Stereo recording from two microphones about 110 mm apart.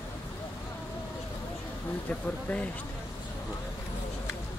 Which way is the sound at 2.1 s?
10° left (ahead or behind).